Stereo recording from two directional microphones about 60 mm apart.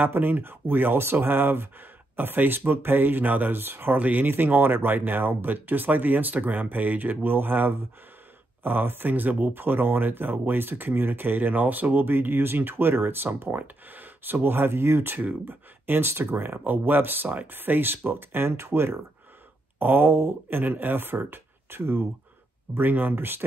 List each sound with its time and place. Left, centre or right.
0.0 s speech: right